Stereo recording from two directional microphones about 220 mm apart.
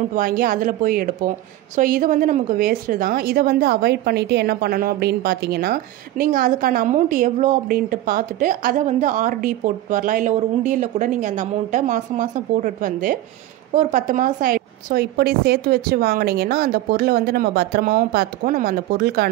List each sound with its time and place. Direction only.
0.1 s a woman's voice: 40° right (ahead or behind)